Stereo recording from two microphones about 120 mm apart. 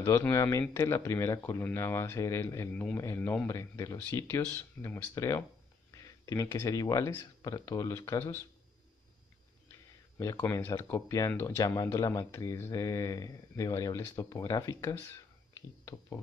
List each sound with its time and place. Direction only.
0.0 s speech: 25° left (ahead or behind)
2.7 s a man's voice: 15° left (ahead or behind)
3.4 s speech: 25° left (ahead or behind)
10.1 s speech: 25° left (ahead or behind)